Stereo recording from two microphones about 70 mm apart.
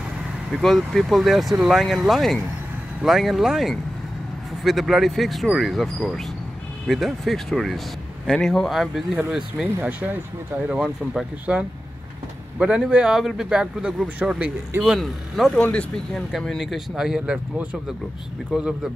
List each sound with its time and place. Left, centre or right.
0.5 s speech: centre
9.8 s speech: right
10.7 s speech: centre
15.0 s speech: centre
15.5 s speech: centre
16.3 s speech: centre
18.5 s speech: centre